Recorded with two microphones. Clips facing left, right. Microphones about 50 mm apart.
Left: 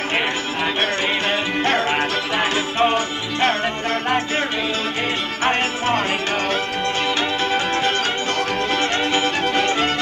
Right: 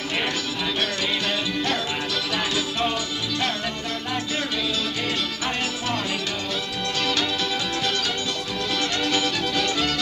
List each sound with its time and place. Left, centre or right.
2.3 s music: left
9.1 s music: left